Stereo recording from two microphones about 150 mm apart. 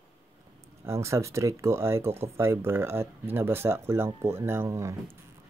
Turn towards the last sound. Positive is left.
turn(degrees=-20)  # may be behind; listen again after turning